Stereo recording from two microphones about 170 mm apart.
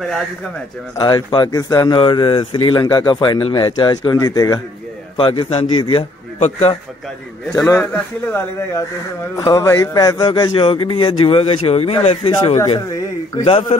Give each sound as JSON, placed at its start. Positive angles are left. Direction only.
{"t": 0.9, "sound": "a man's voice", "side_deg": 25}
{"t": 7.5, "sound": "a man's voice", "side_deg": 15}